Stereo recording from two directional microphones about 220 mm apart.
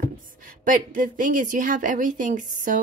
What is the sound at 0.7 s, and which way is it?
Speech, 40° right (ahead or behind).